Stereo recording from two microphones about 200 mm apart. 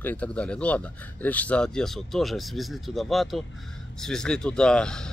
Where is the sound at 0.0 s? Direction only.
5° left (ahead or behind).